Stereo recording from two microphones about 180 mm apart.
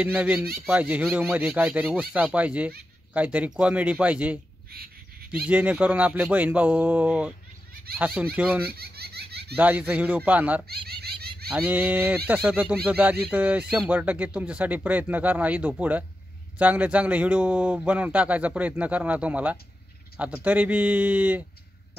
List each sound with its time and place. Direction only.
0.0 s a man's voice: 5° right (ahead or behind)
4.7 s a sound: 55° right (ahead or behind)
5.5 s a man's voice: 10° right (ahead or behind)
8.6 s baby laughter: 60° right (ahead or behind)
9.6 s a man's voice: 10° right (ahead or behind)
10.7 s cat: 60° right (ahead or behind)
11.4 s a man's voice: 5° right (ahead or behind)